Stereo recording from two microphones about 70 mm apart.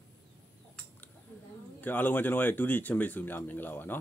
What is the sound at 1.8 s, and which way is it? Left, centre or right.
Speech, left.